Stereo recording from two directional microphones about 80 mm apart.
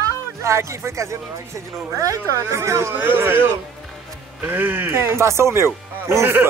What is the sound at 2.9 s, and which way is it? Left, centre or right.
A man's voice, right.